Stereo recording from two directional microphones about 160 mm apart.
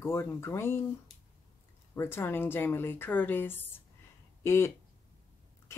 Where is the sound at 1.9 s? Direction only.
15° left (ahead or behind).